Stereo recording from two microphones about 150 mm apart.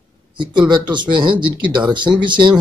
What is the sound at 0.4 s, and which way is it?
A man's voice, 30° right (ahead or behind).